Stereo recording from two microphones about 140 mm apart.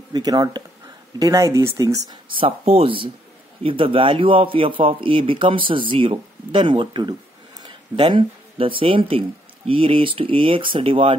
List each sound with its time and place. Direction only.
0.1 s speech: 30° right (ahead or behind)
2.3 s speech: 45° right (ahead or behind)